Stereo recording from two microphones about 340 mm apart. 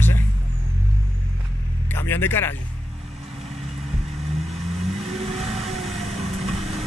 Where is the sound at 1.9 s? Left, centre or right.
Centre.